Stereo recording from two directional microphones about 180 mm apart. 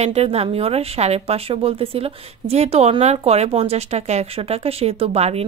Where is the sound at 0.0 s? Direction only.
35° right (ahead or behind).